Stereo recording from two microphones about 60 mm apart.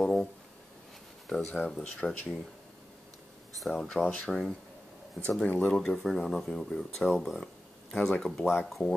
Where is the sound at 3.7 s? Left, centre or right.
Centre.